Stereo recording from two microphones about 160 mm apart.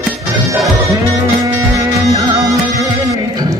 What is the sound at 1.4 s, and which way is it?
Music, 20° right (ahead or behind).